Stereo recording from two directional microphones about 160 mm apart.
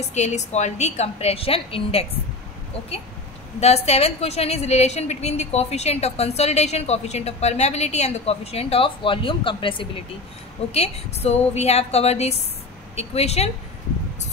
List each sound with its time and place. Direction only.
0.1 s a woman's voice: 45° left (ahead or behind)
3.6 s a woman's voice: 40° left (ahead or behind)